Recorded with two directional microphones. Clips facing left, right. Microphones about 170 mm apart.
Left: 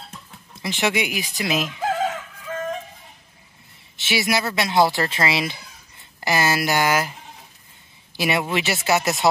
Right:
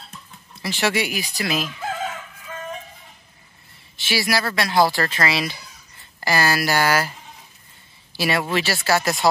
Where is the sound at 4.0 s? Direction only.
20° left (ahead or behind).